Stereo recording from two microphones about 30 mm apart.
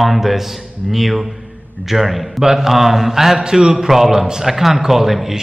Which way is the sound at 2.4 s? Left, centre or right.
Centre.